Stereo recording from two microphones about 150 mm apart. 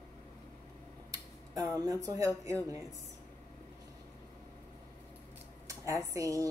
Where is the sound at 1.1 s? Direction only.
25° right (ahead or behind).